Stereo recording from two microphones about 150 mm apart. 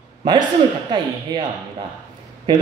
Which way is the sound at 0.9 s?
30° right (ahead or behind).